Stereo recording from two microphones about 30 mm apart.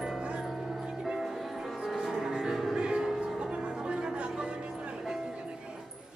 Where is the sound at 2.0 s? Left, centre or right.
Centre.